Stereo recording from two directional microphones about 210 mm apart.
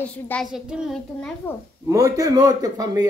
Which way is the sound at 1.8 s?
15° right (ahead or behind).